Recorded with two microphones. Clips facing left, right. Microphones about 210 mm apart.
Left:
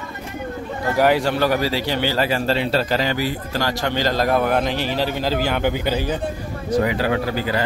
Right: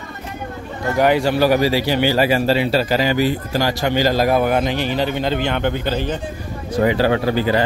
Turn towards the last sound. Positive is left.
turn(degrees=-25)  # may be behind; listen again after turning